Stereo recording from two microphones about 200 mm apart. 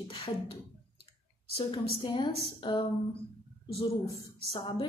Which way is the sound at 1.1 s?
30° left (ahead or behind).